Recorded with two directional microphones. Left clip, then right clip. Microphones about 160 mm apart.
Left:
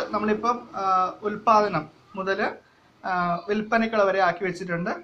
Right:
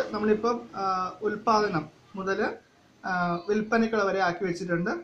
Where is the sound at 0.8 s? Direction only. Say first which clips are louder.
Left 5 dB; 25° left (ahead or behind).